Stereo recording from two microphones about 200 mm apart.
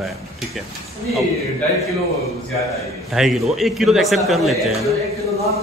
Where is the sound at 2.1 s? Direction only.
30° left (ahead or behind).